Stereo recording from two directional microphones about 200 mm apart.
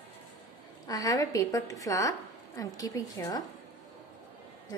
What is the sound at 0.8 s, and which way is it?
A woman's voice, 15° left (ahead or behind).